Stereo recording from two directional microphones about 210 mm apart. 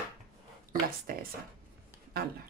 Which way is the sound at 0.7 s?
45° right (ahead or behind).